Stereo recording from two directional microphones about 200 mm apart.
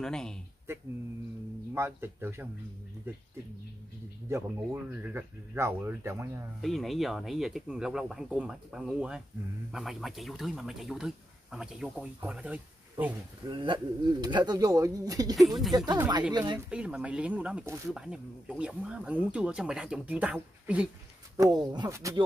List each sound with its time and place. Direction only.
0.0 s speech: 5° left (ahead or behind)
1.7 s speech: 10° right (ahead or behind)
4.3 s speech: 10° right (ahead or behind)
6.6 s speech: centre (ahead or behind)
13.5 s speech: 25° right (ahead or behind)
16.5 s speech: 5° right (ahead or behind)
21.4 s speech: 20° right (ahead or behind)